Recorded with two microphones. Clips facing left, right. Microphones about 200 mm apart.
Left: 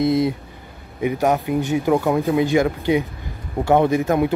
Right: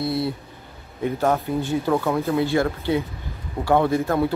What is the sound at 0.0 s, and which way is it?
Speech, 15° left (ahead or behind).